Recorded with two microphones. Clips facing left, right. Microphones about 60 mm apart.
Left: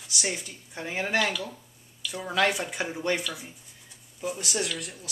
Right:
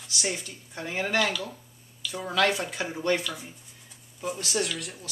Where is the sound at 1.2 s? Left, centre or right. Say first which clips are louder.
Right 1 dB; centre.